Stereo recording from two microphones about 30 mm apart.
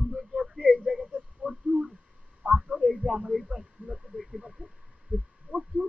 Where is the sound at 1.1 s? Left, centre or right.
Right.